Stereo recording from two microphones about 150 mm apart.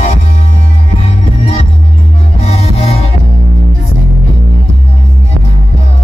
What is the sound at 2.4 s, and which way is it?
Music, 40° left (ahead or behind).